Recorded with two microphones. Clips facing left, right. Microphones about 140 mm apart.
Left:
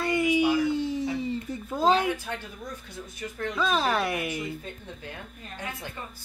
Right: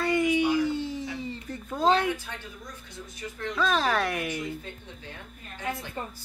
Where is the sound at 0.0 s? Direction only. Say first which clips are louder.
Even; 10° left (ahead or behind).